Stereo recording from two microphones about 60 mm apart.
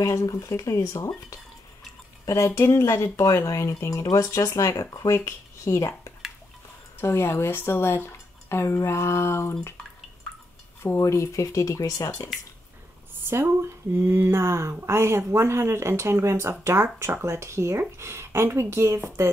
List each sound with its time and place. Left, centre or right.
0.0 s speech: left
5.2 s speech: left
10.8 s speech: left
13.2 s speech: right